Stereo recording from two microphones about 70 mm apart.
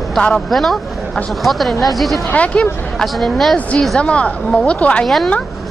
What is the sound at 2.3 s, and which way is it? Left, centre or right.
Speech, centre.